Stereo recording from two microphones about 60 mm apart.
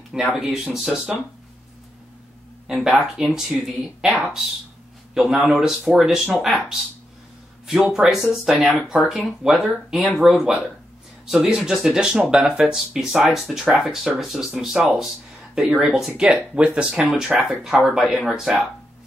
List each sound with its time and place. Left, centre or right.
0.1 s speech: centre
2.7 s speech: centre
18.3 s speech: centre